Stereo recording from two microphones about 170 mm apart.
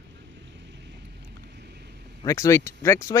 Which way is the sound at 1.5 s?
80° right.